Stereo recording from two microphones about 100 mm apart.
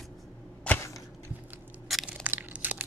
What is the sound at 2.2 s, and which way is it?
Crushing, 15° right (ahead or behind).